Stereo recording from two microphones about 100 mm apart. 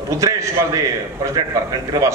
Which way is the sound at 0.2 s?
30° right (ahead or behind).